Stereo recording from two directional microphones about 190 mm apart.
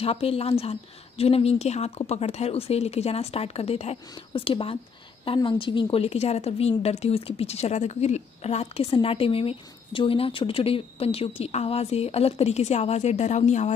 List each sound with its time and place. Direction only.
0.0 s a woman's voice: 30° left (ahead or behind)